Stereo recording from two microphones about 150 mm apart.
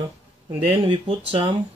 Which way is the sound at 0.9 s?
40° right (ahead or behind).